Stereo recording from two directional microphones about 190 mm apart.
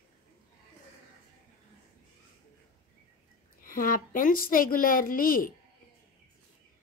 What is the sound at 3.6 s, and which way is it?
A woman's voice, 45° left (ahead or behind).